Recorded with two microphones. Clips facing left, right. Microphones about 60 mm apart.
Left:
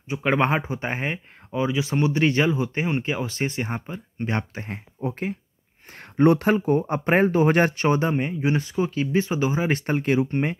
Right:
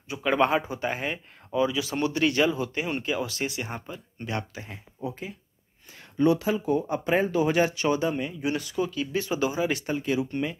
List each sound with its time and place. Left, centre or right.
0.1 s speech: left